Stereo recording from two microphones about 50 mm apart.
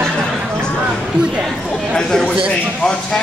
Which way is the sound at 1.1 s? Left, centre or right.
Centre.